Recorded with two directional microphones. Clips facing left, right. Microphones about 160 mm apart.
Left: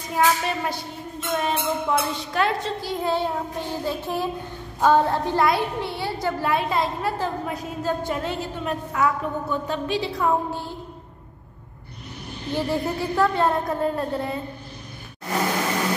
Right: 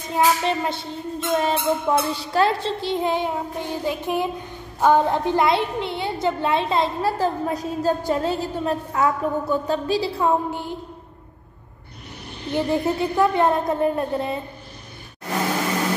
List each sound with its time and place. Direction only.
0.1 s a woman's voice: 25° right (ahead or behind)
10.5 s a sound: 15° right (ahead or behind)
12.5 s a woman's voice: 20° right (ahead or behind)